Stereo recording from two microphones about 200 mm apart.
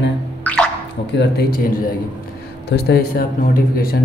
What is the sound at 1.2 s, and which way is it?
Speech, 50° left (ahead or behind).